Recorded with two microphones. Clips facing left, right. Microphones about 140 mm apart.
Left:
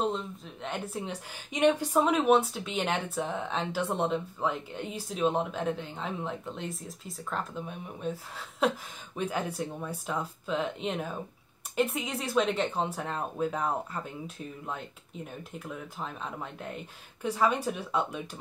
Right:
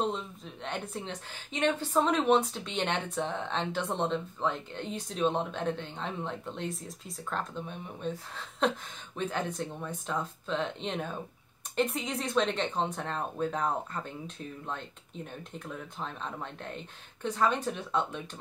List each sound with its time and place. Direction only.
0.0 s speech: centre (ahead or behind)